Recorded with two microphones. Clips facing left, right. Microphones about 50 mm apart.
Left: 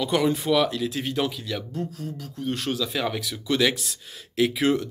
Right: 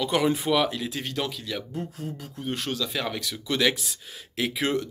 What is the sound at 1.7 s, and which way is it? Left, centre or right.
Speech, right.